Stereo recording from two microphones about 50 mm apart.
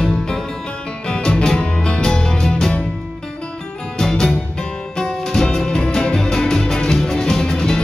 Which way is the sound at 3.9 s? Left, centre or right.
Centre.